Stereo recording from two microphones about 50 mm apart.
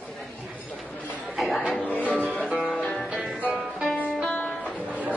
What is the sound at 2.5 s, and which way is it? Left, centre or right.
Music, centre.